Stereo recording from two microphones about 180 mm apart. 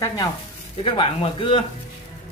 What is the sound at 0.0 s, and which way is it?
Speech, 20° left (ahead or behind).